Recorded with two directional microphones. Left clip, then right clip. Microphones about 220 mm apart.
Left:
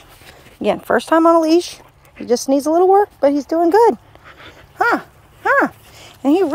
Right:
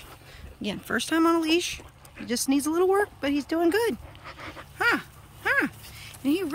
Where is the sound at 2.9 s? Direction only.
10° right (ahead or behind).